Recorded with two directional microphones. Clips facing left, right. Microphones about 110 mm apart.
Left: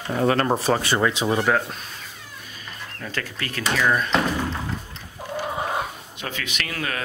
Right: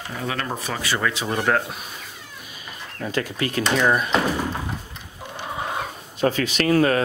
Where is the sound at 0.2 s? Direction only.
45° left (ahead or behind); by 1.3 s 20° left (ahead or behind).